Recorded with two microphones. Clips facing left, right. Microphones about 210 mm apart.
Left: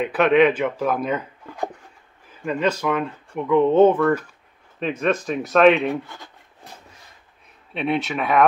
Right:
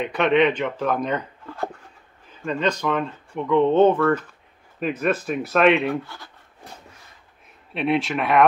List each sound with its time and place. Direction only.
0.0 s speech: 5° left (ahead or behind)
4.7 s speech: 5° right (ahead or behind)
6.0 s speech: 20° left (ahead or behind)
7.7 s speech: centre (ahead or behind)